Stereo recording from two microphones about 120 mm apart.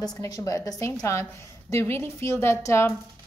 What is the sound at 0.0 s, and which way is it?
A woman's voice, 25° left (ahead or behind).